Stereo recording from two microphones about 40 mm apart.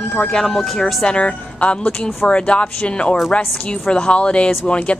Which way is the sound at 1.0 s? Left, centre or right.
Left.